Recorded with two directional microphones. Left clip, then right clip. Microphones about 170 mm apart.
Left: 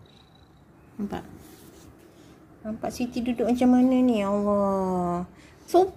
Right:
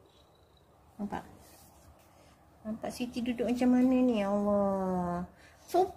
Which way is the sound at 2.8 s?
15° left (ahead or behind).